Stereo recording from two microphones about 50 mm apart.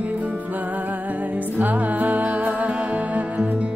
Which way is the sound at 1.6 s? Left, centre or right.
Right.